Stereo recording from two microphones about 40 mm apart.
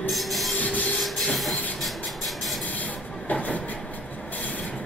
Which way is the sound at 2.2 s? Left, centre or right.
Centre.